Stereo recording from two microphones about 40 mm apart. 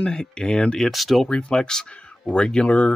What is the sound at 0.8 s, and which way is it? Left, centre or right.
Speech, centre.